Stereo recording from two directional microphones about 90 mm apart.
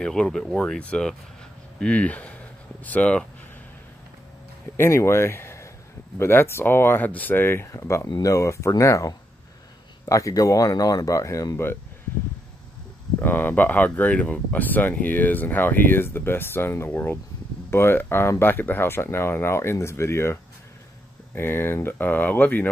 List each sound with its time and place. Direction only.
0.0 s speech: 5° left (ahead or behind)
4.7 s speech: 30° left (ahead or behind)
13.2 s speech: 20° left (ahead or behind)
21.4 s speech: 25° left (ahead or behind)